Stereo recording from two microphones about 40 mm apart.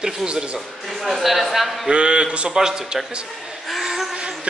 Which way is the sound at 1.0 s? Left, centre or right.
Centre.